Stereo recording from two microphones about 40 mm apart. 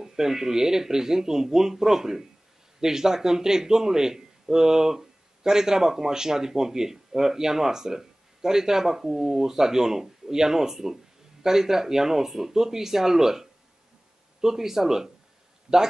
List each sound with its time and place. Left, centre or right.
0.0 s a man's voice: centre